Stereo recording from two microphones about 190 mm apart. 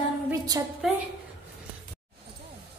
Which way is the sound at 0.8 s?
Centre (ahead or behind).